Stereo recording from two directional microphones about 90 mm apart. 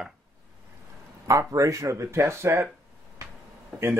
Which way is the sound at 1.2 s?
35° right (ahead or behind).